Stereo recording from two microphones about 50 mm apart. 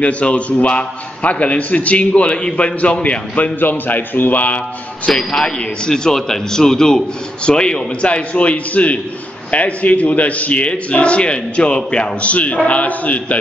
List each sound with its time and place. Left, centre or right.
0.0 s a man's voice: left
3.5 s a man's voice: left
5.3 s a man's voice: centre; by 13.4 s left